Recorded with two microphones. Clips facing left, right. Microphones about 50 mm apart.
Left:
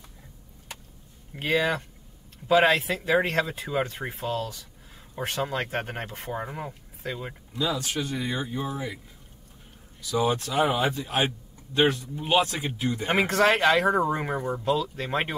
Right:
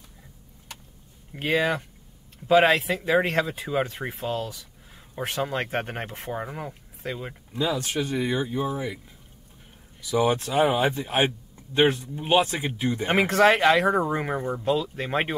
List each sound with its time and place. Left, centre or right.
2.4 s speech: right
3.0 s speech: centre
3.3 s speech: centre
4.1 s speech: right
5.1 s speech: centre
5.5 s speech: right
6.1 s speech: centre
7.5 s speech: right
7.9 s speech: right
10.0 s speech: right
11.0 s speech: right
13.9 s speech: centre
14.6 s speech: right